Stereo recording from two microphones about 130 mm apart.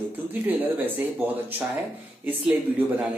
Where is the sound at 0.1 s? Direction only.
15° right (ahead or behind).